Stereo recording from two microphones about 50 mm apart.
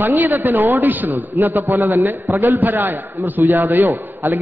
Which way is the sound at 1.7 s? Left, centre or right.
Right.